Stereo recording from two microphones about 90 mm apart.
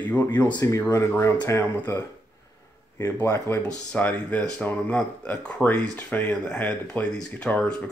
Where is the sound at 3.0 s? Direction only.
30° left (ahead or behind).